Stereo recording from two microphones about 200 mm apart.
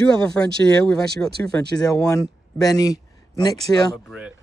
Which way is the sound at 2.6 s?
20° left (ahead or behind).